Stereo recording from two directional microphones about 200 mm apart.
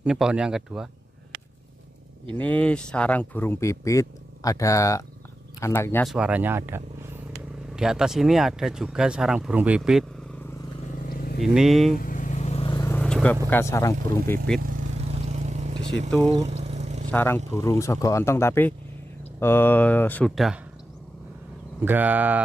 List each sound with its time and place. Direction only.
0.0 s speech: 5° right (ahead or behind)
2.3 s speech: 10° left (ahead or behind)
6.0 s speech: 5° right (ahead or behind)
11.1 s vehicle: 50° left (ahead or behind)
11.4 s speech: centre (ahead or behind)
11.9 s vehicle: 45° left (ahead or behind); by 12.9 s 20° left (ahead or behind)
12.9 s vehicle: 5° left (ahead or behind)
13.5 s speech: 15° left (ahead or behind)
14.8 s vehicle: 35° right (ahead or behind)
17.1 s speech: 10° left (ahead or behind)
21.8 s speech: 10° right (ahead or behind)